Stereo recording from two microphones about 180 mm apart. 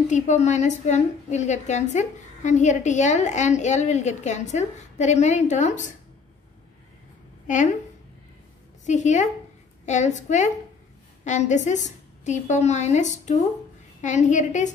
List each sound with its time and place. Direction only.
0.1 s a woman's voice: 40° left (ahead or behind)
7.4 s a woman's voice: 45° left (ahead or behind)
8.8 s a woman's voice: 40° left (ahead or behind)